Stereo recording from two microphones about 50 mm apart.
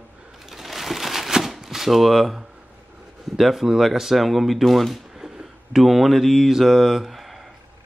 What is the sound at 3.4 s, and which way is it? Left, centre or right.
Speech, centre.